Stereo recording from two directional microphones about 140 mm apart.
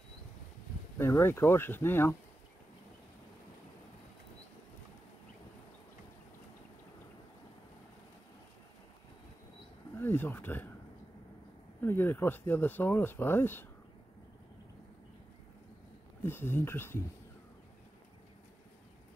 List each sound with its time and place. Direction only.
0.9 s speech: 15° left (ahead or behind)
9.9 s speech: 15° left (ahead or behind)
11.8 s speech: 15° left (ahead or behind)
16.3 s speech: 15° left (ahead or behind)